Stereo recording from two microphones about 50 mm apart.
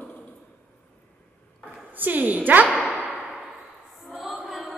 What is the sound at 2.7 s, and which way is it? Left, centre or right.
Whip, right.